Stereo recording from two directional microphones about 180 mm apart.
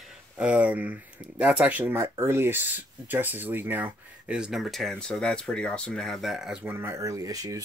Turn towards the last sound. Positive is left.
turn(degrees=-20)  # may be behind; listen again after turning